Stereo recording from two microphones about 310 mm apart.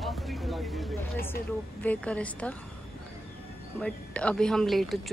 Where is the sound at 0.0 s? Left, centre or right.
Centre.